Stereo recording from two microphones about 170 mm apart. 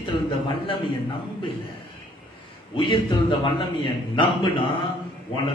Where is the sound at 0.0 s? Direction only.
30° left (ahead or behind).